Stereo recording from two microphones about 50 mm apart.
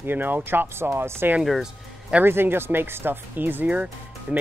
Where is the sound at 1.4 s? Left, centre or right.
Centre.